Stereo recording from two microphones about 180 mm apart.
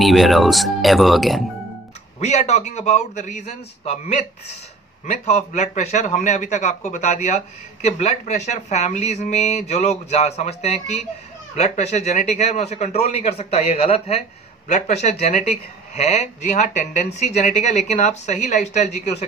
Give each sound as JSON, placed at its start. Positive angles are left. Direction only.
{"t": 0.0, "sound": "speech", "side_deg": 0}
{"t": 2.1, "sound": "a man's voice", "side_deg": 40}
{"t": 5.0, "sound": "a man's voice", "side_deg": 40}